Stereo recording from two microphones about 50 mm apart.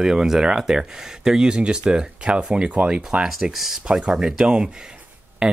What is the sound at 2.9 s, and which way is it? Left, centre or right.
Speech, centre.